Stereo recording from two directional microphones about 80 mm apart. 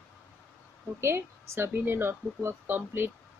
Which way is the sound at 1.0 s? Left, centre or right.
Right.